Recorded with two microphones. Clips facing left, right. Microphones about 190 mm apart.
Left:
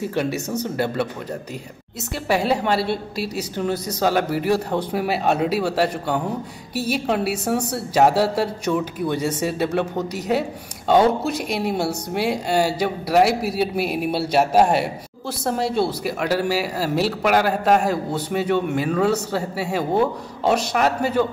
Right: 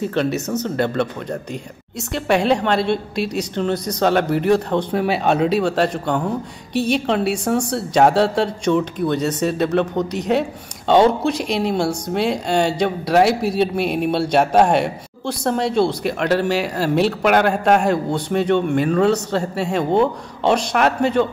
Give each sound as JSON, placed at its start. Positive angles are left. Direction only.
{"t": 0.0, "sound": "a woman's voice", "side_deg": 10}
{"t": 2.1, "sound": "a woman's voice", "side_deg": 5}